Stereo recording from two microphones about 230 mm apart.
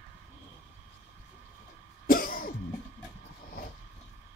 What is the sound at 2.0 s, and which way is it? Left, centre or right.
Cough, left.